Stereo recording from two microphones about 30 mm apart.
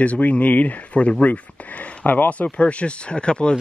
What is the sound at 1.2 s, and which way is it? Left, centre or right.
Speech, left.